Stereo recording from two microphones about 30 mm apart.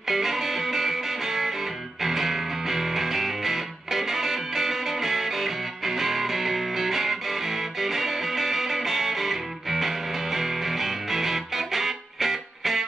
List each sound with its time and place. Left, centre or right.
0.0 s music: centre